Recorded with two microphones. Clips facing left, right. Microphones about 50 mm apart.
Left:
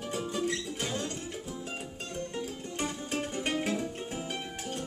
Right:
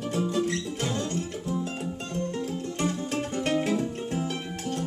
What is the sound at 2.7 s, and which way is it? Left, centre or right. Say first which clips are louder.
Music: right 4 dB; centre.